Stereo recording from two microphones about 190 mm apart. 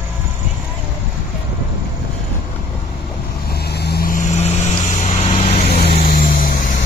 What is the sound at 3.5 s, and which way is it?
Vehicle, 60° left (ahead or behind).